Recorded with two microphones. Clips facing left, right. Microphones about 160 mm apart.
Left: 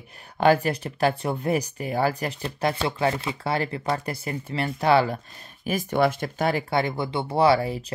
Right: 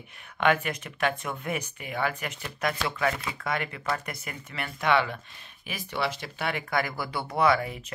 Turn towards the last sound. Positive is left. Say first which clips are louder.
# left 4 dB
turn(degrees=30)  # may be behind; listen again after turning